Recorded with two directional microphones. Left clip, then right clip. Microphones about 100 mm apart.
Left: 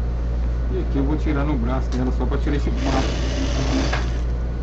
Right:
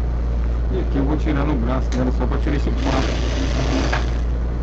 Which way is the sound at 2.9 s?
15° left (ahead or behind).